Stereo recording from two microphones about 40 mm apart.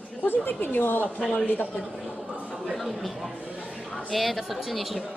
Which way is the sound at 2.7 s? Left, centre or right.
Centre.